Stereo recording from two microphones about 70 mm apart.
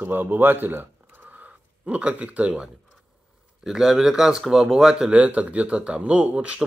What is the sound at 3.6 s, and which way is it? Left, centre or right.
Speech, centre.